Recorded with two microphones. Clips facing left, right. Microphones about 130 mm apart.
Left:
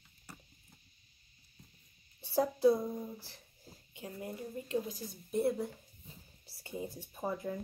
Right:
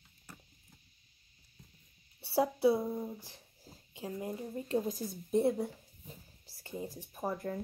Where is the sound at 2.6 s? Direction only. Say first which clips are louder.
Left 2 dB; 5° right (ahead or behind).